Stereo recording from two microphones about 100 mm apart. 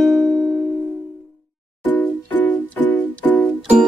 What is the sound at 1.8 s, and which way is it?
Music, 20° left (ahead or behind).